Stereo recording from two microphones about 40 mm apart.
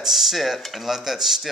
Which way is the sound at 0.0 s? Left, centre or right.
Centre.